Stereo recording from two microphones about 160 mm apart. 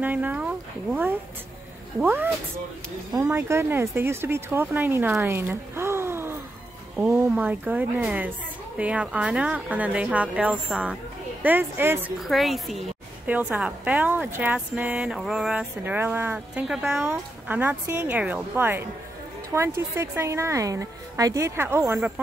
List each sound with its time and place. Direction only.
0.0 s speech: 10° right (ahead or behind)
12.2 s a woman's voice: centre (ahead or behind)
17.0 s speech: 15° right (ahead or behind)